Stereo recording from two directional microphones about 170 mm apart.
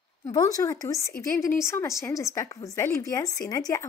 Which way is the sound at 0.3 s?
20° left (ahead or behind).